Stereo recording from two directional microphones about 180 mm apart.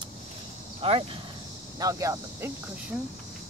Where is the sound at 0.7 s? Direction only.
30° right (ahead or behind).